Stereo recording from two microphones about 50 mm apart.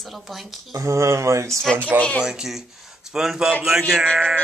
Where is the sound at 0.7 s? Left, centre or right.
Right.